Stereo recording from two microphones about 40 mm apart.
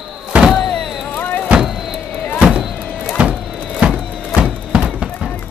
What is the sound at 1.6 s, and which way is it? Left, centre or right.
Music, centre.